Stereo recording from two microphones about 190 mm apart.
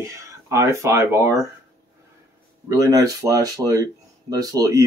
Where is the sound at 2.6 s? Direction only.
20° right (ahead or behind).